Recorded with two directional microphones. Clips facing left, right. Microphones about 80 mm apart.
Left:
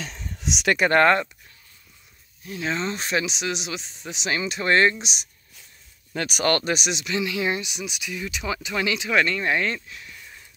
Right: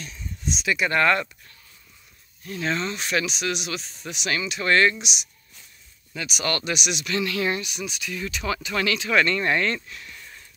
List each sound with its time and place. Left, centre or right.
0.0 s a sound: left
0.7 s speech: left
2.4 s speech: centre
2.8 s speech: left
6.1 s speech: left
7.2 s speech: centre
9.8 s a sound: centre